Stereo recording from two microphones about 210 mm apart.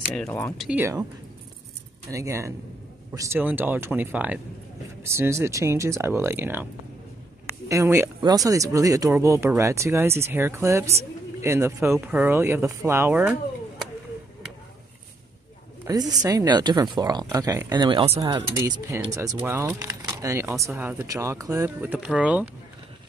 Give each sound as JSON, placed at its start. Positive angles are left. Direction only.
{"t": 0.0, "sound": "speech", "side_deg": 0}
{"t": 0.6, "sound": "speech", "side_deg": -5}
{"t": 2.0, "sound": "speech", "side_deg": -15}
{"t": 15.8, "sound": "speech", "side_deg": -15}